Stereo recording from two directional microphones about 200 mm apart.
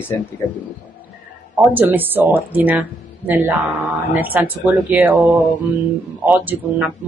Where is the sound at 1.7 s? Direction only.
10° right (ahead or behind).